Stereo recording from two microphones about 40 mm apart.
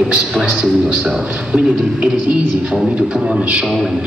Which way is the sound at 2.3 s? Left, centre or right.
Right.